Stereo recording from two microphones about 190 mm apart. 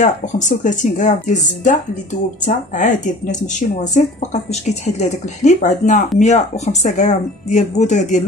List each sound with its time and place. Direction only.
0.0 s speech: 40° left (ahead or behind)